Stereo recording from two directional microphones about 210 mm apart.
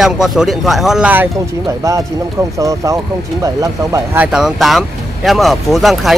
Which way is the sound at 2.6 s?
15° right (ahead or behind).